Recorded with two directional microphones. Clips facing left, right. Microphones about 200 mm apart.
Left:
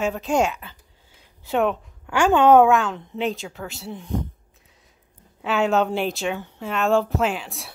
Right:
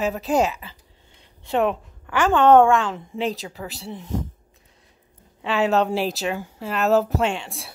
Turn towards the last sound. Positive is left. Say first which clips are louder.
# even
turn(degrees=0)  # may be behind; listen again after turning